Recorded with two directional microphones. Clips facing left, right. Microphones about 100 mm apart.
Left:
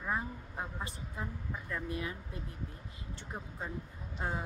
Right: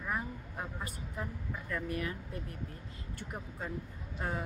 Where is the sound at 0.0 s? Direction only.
20° left (ahead or behind).